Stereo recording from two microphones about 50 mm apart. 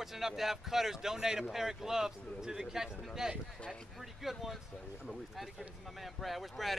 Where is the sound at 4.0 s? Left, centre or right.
Centre.